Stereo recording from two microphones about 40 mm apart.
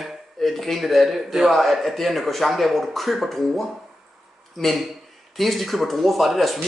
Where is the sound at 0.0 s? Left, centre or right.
Centre.